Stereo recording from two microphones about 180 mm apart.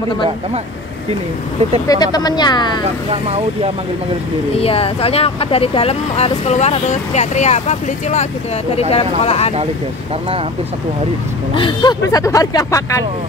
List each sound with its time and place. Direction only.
1.9 s speech: 20° left (ahead or behind)
3.1 s speech: 35° right (ahead or behind)
4.6 s speech: 30° left (ahead or behind)
11.5 s speech: 25° left (ahead or behind)